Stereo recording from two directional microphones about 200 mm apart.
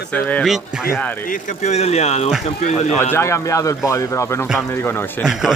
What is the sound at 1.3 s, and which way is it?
Speech, 35° left (ahead or behind).